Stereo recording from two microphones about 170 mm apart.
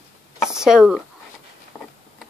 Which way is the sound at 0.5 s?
5° right (ahead or behind).